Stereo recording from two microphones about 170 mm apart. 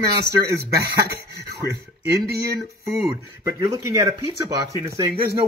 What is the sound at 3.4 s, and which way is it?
Speech, 20° right (ahead or behind).